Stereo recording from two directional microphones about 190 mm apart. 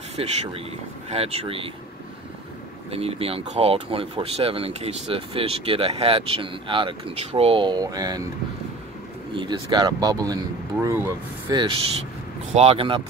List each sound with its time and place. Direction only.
0.2 s speech: 30° right (ahead or behind)
2.9 s speech: 30° right (ahead or behind)
9.3 s speech: 25° right (ahead or behind)
12.5 s speech: 30° right (ahead or behind)